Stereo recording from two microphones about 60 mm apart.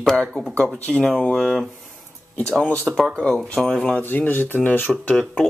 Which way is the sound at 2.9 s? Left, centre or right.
Centre.